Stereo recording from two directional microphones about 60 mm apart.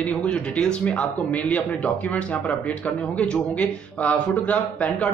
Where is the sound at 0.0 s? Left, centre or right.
Left.